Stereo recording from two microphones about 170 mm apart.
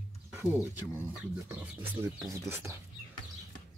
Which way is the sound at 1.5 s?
10° right (ahead or behind).